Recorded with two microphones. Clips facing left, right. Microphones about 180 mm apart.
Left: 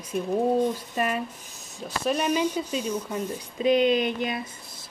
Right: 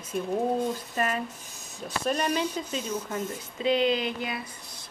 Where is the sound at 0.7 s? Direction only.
15° left (ahead or behind).